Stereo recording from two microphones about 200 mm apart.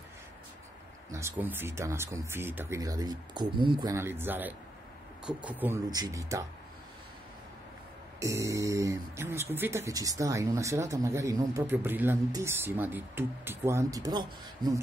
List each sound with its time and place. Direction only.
1.1 s speech: 10° right (ahead or behind)
5.9 s speech: 20° right (ahead or behind)
8.2 s speech: 15° right (ahead or behind)